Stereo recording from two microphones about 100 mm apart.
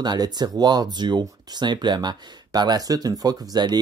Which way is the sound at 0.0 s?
45° right (ahead or behind).